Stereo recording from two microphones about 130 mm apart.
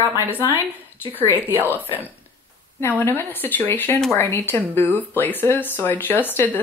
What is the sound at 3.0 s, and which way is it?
Speech, 15° left (ahead or behind).